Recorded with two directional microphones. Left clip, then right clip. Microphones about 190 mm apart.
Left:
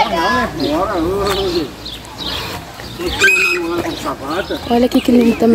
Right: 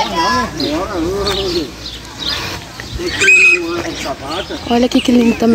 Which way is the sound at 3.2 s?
60° left (ahead or behind).